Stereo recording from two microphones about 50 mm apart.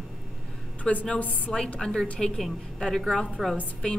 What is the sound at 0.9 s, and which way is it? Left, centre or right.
A woman's voice, centre.